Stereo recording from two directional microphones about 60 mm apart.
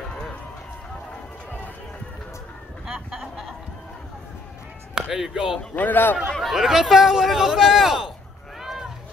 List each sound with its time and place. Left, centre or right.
2.9 s a sound: centre
5.1 s speech: centre
5.6 s a man's voice: left
6.4 s speech: centre
8.5 s run: centre